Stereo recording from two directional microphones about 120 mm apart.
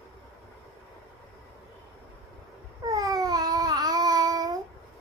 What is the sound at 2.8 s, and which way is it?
Babbling, 30° right (ahead or behind).